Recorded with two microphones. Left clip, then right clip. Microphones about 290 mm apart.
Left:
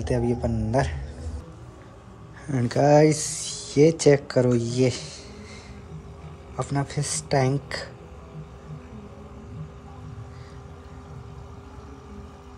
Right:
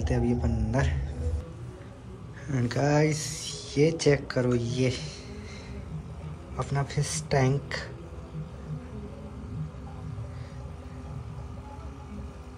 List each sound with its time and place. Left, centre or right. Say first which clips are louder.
0.0 s speech: left 4 dB; centre
2.4 s speech: left 7 dB; centre
6.5 s speech: left 3 dB; centre